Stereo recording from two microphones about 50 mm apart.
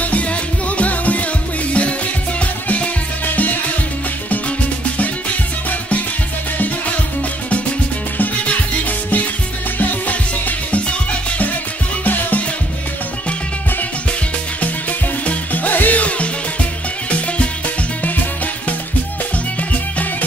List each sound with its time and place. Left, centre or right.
0.0 s music: left
5.7 s music: left
8.5 s music: left
12.0 s music: left
14.6 s music: left
19.7 s music: left